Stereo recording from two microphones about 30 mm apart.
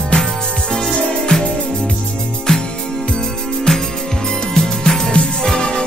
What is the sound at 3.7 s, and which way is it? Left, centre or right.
Music, left.